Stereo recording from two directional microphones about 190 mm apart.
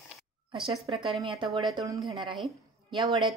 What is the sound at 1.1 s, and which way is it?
Speech, centre (ahead or behind).